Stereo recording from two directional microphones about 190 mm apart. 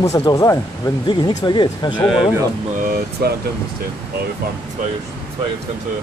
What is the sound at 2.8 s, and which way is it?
Air conditioning, 50° right (ahead or behind).